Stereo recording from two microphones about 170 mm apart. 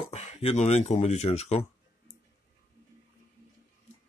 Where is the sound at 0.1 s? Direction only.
40° left (ahead or behind).